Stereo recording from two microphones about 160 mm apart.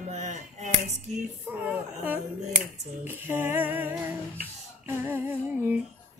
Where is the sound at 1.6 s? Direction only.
10° right (ahead or behind).